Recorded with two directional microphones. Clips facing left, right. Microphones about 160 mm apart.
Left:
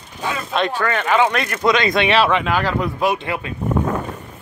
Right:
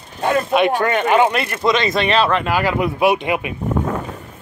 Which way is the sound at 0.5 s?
15° right (ahead or behind).